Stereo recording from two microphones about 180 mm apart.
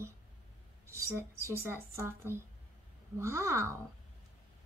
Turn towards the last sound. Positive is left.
turn(degrees=-15)  # may be behind; listen again after turning